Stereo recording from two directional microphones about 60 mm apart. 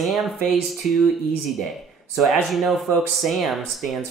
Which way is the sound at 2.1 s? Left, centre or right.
Centre.